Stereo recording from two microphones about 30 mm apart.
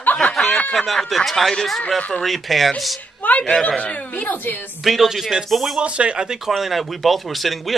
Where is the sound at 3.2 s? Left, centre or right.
Left.